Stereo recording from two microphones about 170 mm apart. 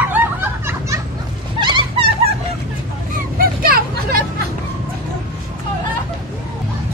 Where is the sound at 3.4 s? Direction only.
60° right (ahead or behind).